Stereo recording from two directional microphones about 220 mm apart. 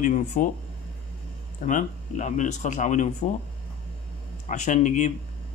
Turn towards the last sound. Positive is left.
turn(degrees=35)  # may be behind; listen again after turning